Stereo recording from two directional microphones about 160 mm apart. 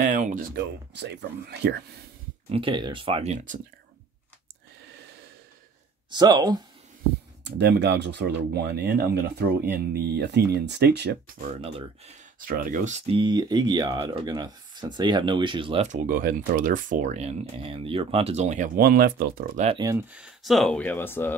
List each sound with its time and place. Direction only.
0.0 s speech: 55° right (ahead or behind); by 2.0 s 90° right
2.5 s speech: 30° right (ahead or behind); by 3.5 s 45° right (ahead or behind)
6.0 s speech: 25° right (ahead or behind)
7.4 s speech: 90° right
11.4 s speech: 40° right (ahead or behind)
12.4 s speech: 60° right (ahead or behind); by 15.9 s 35° right (ahead or behind)
15.9 s speech: 60° right (ahead or behind)
18.8 s speech: 70° right (ahead or behind)
19.8 s speech: 20° right (ahead or behind)
20.1 s speech: 5° right (ahead or behind); by 21.4 s 15° left (ahead or behind)